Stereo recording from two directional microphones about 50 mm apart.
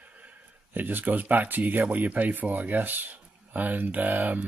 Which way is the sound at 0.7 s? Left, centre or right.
Right.